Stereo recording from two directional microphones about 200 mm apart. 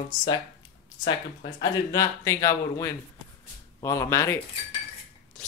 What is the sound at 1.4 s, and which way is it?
Speech, 20° left (ahead or behind).